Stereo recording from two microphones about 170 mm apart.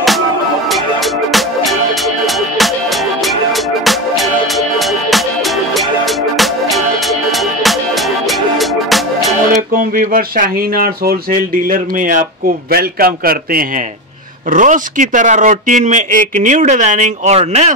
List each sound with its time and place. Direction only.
1.3 s music: centre (ahead or behind)
3.8 s music: centre (ahead or behind)
6.3 s music: centre (ahead or behind)
9.7 s speech: 55° right (ahead or behind)
14.5 s speech: 50° right (ahead or behind)